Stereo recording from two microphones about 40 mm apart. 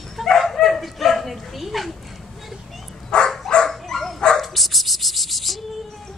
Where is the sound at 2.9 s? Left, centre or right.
Centre.